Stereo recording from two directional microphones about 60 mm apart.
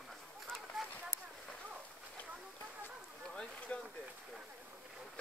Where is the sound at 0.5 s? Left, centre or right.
Centre.